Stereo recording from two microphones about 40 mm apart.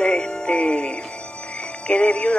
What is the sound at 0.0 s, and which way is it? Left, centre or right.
Music, left.